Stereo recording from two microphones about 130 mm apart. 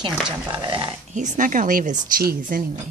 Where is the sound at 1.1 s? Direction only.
80° right.